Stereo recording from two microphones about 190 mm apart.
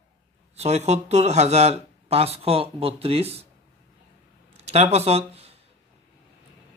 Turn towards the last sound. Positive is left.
turn(degrees=-30)  # may be behind; listen again after turning